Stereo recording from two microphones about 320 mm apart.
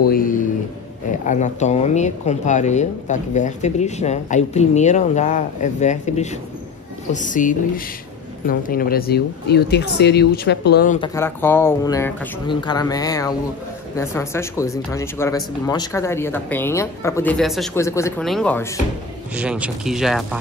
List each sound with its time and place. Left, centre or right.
0.1 s speech: left
11.0 s speech: centre